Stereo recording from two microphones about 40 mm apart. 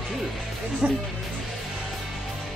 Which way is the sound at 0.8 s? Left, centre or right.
Right.